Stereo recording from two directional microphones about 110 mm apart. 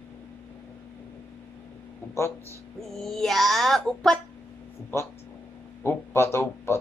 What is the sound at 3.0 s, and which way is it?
A child's voice, 5° left (ahead or behind).